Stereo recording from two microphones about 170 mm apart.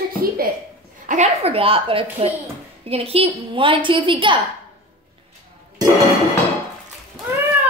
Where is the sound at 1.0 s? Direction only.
45° right (ahead or behind); by 4.4 s 30° right (ahead or behind).